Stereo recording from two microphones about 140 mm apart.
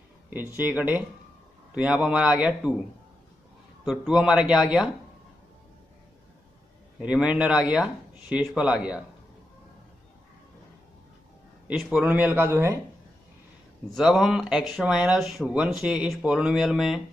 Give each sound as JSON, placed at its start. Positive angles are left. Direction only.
{"t": 0.3, "sound": "speech", "side_deg": -15}
{"t": 3.8, "sound": "speech", "side_deg": 0}
{"t": 7.0, "sound": "speech", "side_deg": -5}
{"t": 11.6, "sound": "speech", "side_deg": -10}
{"t": 13.9, "sound": "speech", "side_deg": -5}